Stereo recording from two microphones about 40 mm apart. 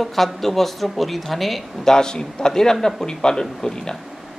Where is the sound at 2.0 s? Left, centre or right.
Centre.